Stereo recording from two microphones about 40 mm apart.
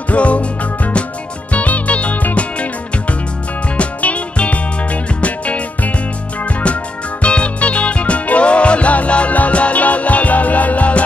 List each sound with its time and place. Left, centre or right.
0.1 s music: left